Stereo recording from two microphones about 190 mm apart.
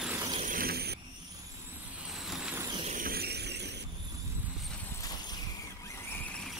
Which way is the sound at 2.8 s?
45° right (ahead or behind).